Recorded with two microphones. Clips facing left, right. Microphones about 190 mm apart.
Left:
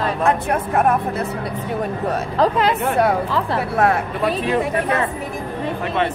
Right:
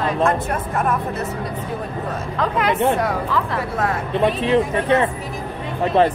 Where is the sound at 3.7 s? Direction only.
65° left (ahead or behind).